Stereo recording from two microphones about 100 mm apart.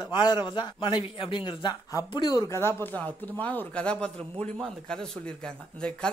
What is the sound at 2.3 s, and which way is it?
Speech, 35° left (ahead or behind).